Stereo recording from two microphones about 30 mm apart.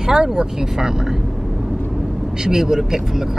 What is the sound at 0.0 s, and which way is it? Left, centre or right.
Speech, right.